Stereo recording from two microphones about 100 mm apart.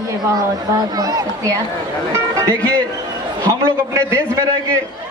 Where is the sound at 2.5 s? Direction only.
15° left (ahead or behind).